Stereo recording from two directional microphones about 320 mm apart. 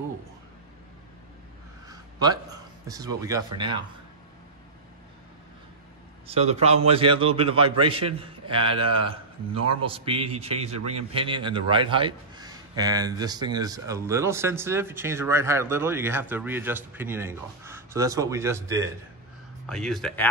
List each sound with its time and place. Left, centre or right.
1.9 s a sound: centre
2.9 s a man's voice: centre
6.2 s a man's voice: centre
19.6 s a man's voice: centre